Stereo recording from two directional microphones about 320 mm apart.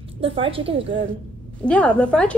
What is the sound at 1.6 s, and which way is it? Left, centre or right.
Speech, centre.